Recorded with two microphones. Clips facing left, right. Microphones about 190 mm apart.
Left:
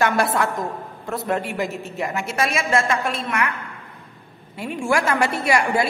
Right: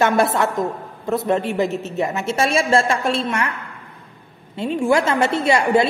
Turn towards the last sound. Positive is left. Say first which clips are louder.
# right 4 dB
turn(degrees=-25)  # may be behind; listen again after turning